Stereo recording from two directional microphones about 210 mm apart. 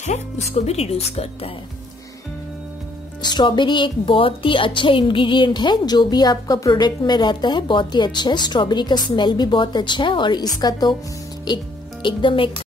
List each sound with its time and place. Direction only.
0.0 s a woman's voice: 30° left (ahead or behind)
3.2 s a woman's voice: 20° left (ahead or behind)